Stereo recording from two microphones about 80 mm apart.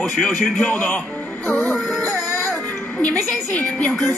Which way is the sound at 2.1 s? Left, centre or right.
Left.